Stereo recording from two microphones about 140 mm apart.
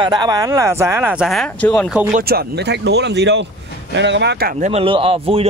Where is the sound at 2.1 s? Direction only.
90° right.